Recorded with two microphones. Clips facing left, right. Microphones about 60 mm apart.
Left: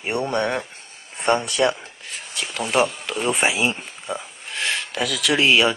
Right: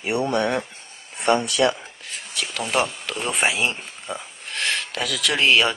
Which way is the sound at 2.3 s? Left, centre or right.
Centre.